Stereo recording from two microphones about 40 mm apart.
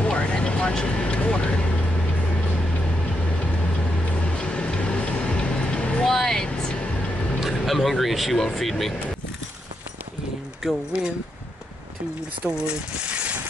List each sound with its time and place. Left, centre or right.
0.0 s vehicle: left
4.4 s vehicle: left
6.0 s vehicle: centre
7.3 s speech: centre
10.6 s speech: centre
12.4 s speech: right